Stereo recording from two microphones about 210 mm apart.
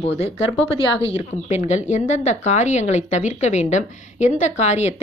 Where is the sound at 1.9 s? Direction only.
35° left (ahead or behind).